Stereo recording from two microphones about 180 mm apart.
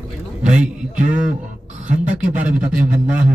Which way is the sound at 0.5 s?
5° right (ahead or behind).